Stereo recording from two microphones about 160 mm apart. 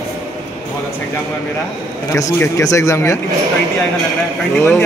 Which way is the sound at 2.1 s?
20° left (ahead or behind).